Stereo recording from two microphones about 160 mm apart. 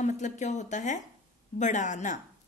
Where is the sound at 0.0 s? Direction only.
50° left (ahead or behind).